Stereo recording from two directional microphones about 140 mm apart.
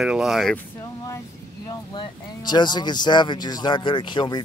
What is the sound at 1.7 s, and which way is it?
Speech, 30° left (ahead or behind).